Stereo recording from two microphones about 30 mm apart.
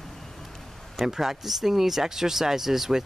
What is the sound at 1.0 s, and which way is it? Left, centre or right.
Speech, centre.